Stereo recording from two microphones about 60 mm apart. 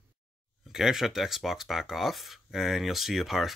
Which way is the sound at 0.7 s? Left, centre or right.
Centre.